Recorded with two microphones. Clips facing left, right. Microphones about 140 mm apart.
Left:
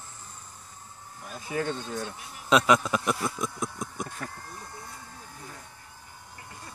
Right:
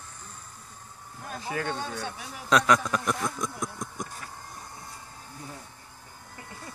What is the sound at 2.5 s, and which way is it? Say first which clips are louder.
Speech: left 1 dB; 5° left (ahead or behind).